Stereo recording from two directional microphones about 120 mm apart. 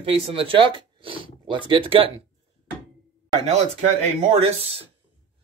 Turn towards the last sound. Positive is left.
turn(degrees=-50)  # may be behind; listen again after turning